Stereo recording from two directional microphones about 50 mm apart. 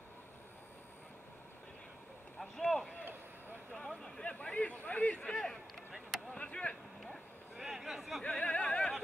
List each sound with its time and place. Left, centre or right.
2.3 s vehicle: centre
2.7 s speech: centre
4.2 s speech: left
5.2 s speech: centre
6.3 s speech: left
7.0 s a sound: centre
8.2 s opera: left